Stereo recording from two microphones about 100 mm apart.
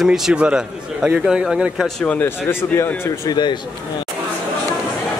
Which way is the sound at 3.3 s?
45° left (ahead or behind).